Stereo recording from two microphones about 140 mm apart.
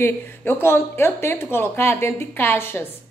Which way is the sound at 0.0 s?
15° left (ahead or behind).